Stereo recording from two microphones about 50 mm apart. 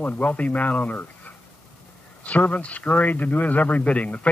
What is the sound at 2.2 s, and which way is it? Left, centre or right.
Speech, left.